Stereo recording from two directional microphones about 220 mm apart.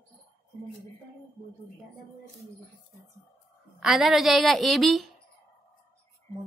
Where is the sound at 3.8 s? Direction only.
Centre (ahead or behind).